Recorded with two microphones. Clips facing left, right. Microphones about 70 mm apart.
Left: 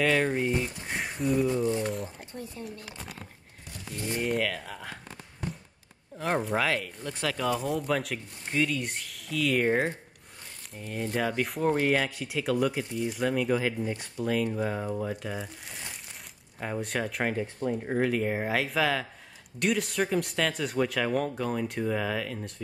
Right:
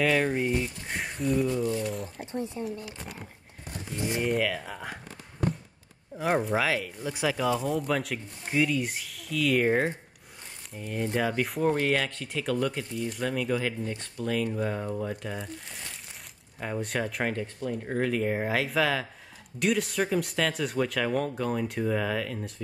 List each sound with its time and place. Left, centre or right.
0.0 s speech: centre
2.6 s speech: right
3.9 s speech: centre
4.2 s speech: centre
6.1 s speech: centre